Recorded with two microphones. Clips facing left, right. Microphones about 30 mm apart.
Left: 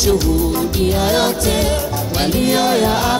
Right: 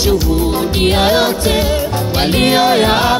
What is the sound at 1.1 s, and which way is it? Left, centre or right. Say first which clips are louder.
Music: right 3 dB; right.